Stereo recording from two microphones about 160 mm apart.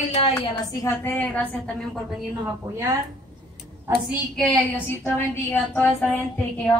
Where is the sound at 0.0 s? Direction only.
45° left (ahead or behind).